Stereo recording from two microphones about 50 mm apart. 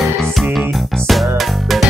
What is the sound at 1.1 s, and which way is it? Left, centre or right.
Music, centre.